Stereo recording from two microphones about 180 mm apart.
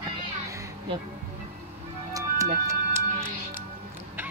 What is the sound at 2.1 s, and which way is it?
Music, 15° right (ahead or behind).